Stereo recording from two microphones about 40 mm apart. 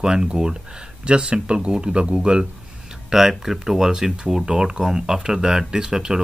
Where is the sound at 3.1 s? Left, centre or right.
Centre.